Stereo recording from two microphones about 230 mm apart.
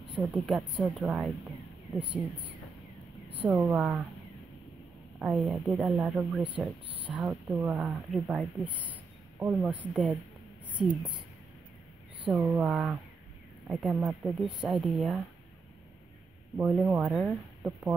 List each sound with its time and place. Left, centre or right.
0.2 s speech: centre
3.3 s speech: centre
5.2 s speech: centre
10.7 s speech: right
12.3 s speech: centre
16.5 s speech: centre